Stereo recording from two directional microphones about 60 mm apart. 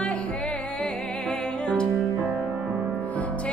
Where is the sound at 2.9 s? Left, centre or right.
Left.